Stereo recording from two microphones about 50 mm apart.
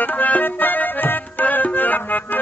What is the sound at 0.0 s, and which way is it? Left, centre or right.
Music, left.